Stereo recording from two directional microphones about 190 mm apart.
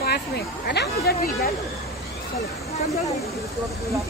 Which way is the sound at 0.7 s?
60° left (ahead or behind).